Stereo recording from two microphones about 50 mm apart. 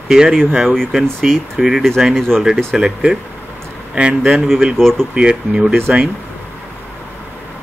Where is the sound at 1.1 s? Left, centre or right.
Centre.